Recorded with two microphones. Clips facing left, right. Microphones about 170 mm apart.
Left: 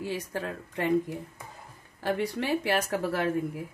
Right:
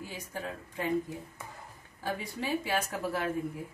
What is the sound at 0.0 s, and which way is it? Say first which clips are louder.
Speech: left 7 dB; 75° left (ahead or behind).